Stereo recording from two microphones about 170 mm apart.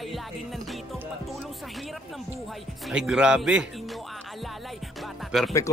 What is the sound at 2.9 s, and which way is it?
Speech, 5° right (ahead or behind).